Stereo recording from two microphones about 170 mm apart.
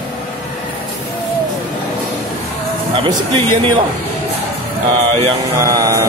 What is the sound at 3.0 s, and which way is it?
Speech, 30° right (ahead or behind).